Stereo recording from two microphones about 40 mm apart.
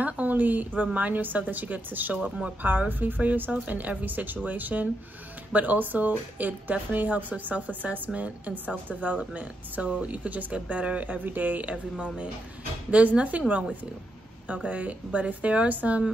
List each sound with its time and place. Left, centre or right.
0.0 s a woman's voice: right
11.1 s speech: right
11.6 s speech: right
14.5 s speech: right